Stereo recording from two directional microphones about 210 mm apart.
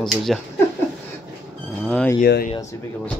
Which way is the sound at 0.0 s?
Centre (ahead or behind).